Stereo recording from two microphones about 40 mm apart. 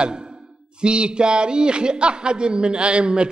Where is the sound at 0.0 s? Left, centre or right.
Right.